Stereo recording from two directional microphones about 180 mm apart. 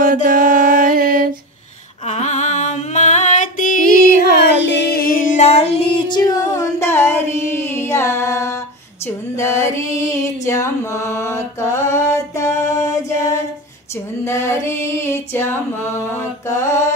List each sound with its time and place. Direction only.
0.0 s music: 50° right (ahead or behind)
2.0 s music: 40° left (ahead or behind)
4.4 s female singing: 70° left (ahead or behind); by 8.5 s 15° left (ahead or behind)
9.0 s music: 15° left (ahead or behind)
14.2 s a sound: 15° left (ahead or behind)